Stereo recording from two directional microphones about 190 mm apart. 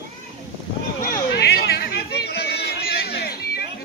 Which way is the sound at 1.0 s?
55° left (ahead or behind).